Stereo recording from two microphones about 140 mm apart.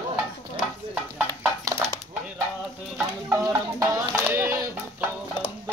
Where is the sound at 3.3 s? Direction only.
25° right (ahead or behind).